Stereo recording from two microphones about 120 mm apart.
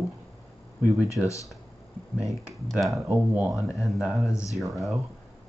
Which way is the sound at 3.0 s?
15° right (ahead or behind).